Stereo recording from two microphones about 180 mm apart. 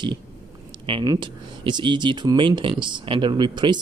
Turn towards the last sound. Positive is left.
turn(degrees=-25)  # may be behind; listen again after turning